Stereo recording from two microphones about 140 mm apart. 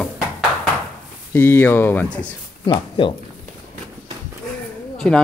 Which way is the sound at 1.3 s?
15° left (ahead or behind).